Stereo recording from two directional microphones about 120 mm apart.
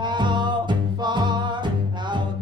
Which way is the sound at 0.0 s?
40° right (ahead or behind).